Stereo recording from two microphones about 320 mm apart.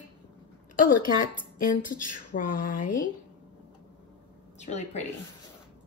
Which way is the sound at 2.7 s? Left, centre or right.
Left.